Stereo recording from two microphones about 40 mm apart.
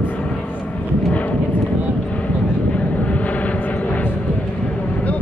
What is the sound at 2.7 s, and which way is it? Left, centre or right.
Vehicle, left.